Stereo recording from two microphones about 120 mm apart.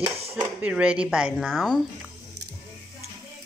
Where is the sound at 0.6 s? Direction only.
10° right (ahead or behind).